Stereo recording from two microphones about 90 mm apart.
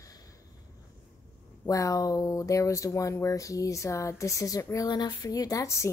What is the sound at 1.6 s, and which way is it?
Speech, 40° left (ahead or behind).